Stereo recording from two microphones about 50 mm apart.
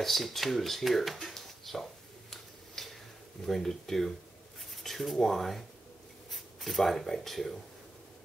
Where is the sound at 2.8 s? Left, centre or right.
Centre.